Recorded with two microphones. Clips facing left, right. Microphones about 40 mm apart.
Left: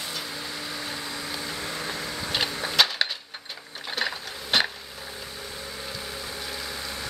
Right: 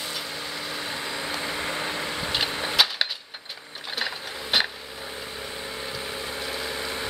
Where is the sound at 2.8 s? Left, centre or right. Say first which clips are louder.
Left 1 dB; centre.